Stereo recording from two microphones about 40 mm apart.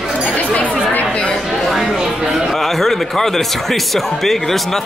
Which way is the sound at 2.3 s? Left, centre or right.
Centre.